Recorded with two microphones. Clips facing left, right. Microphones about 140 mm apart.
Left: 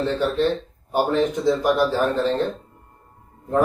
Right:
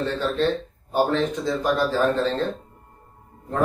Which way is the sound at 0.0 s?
15° left (ahead or behind).